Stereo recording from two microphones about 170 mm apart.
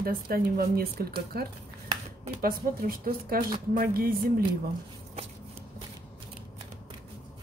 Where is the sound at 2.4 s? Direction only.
60° right (ahead or behind).